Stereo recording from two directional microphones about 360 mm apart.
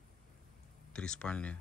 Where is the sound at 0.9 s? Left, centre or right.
Centre.